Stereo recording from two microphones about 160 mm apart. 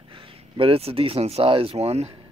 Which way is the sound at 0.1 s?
35° right (ahead or behind).